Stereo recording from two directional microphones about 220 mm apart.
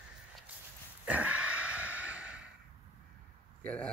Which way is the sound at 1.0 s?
5° right (ahead or behind).